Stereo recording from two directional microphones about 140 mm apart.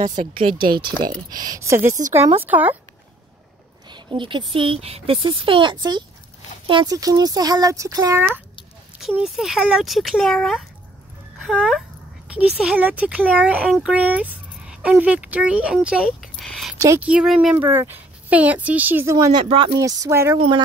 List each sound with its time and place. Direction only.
0.0 s speech: 60° right (ahead or behind)
0.3 s speech: 40° right (ahead or behind)
0.6 s speech: 90° right
1.5 s speech: 20° right (ahead or behind)
3.9 s speech: 35° right (ahead or behind)
9.2 s speech: 5° right (ahead or behind)
17.6 s speech: 15° right (ahead or behind)
19.1 s speech: 30° right (ahead or behind)
19.8 s speech: 25° right (ahead or behind)
20.3 s speech: 35° right (ahead or behind)